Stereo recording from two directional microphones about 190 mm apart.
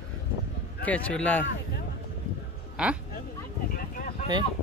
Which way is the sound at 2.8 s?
5° right (ahead or behind).